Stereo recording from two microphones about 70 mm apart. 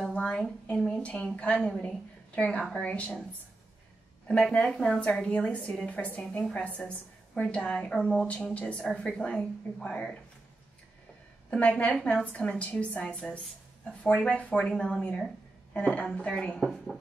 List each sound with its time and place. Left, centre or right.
0.1 s a sound: centre
0.8 s a woman's voice: centre
4.3 s speech: centre
11.5 s speech: centre
13.0 s speech: centre
16.7 s speech: centre